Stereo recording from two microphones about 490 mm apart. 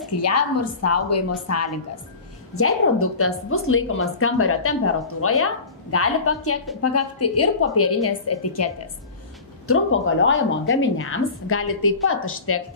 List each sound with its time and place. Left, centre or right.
0.2 s a woman's voice: left
9.7 s a woman's voice: left